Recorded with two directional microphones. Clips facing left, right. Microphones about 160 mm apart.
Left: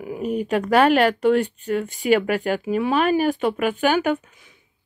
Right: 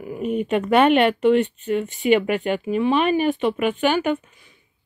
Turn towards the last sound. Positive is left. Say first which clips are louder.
# even
turn(degrees=0)  # may be behind; listen again after turning